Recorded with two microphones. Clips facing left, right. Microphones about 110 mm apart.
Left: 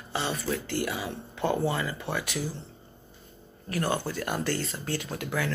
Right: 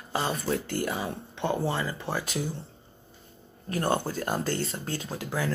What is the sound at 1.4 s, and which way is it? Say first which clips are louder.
Speech: left 1 dB; 25° right (ahead or behind).